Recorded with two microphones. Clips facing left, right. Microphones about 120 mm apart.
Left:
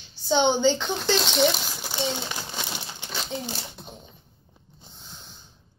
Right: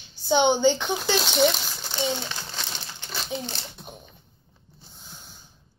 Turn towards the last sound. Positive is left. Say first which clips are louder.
# even
turn(degrees=-5)  # may be behind; listen again after turning